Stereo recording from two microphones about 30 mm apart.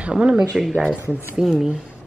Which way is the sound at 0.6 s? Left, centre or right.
Centre.